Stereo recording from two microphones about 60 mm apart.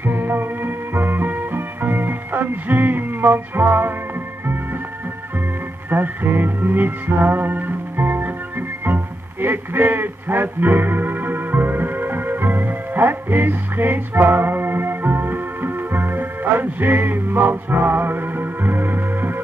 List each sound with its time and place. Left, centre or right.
0.0 s music: right
5.9 s music: right